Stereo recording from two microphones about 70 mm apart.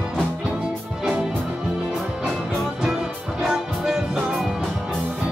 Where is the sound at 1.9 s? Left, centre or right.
Centre.